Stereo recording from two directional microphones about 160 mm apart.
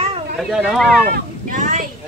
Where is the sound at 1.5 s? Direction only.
55° right (ahead or behind).